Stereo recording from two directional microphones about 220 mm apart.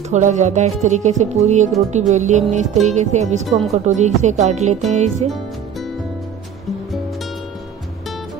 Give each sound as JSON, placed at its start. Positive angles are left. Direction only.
{"t": 0.1, "sound": "speech", "side_deg": -35}